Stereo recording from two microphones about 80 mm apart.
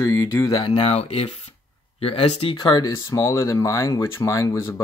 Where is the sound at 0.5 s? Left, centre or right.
Left.